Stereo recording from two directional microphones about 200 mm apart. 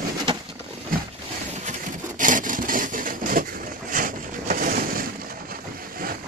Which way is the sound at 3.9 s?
45° right (ahead or behind).